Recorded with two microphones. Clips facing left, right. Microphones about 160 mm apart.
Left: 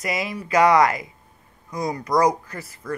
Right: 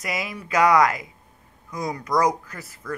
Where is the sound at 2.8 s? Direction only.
25° left (ahead or behind).